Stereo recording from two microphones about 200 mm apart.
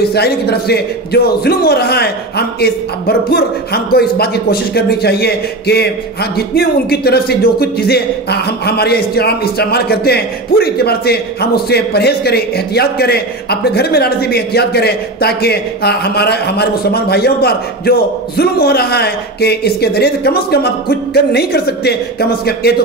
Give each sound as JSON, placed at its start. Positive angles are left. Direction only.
{"t": 0.0, "sound": "speech", "side_deg": 55}